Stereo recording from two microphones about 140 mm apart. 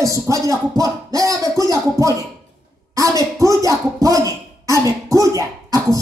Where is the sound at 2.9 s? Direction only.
25° right (ahead or behind).